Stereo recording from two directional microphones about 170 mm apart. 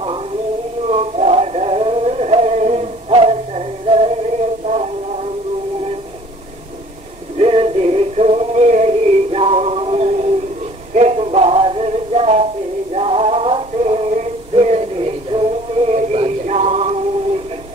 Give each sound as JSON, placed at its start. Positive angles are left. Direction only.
{"t": 0.8, "sound": "a sound", "side_deg": -40}
{"t": 4.6, "sound": "music", "side_deg": -40}
{"t": 7.3, "sound": "synthetic singing", "side_deg": -35}
{"t": 11.0, "sound": "male singing", "side_deg": -40}
{"t": 12.9, "sound": "synthetic singing", "side_deg": -35}
{"t": 15.9, "sound": "a sound", "side_deg": -40}